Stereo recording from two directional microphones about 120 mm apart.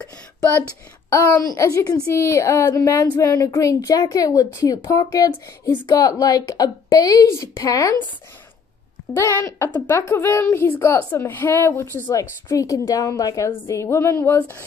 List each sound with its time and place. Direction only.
1.1 s speech: 25° left (ahead or behind)
9.1 s speech: 25° left (ahead or behind)